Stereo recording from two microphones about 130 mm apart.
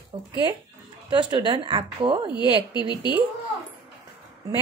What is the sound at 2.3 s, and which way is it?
Speech, 35° left (ahead or behind).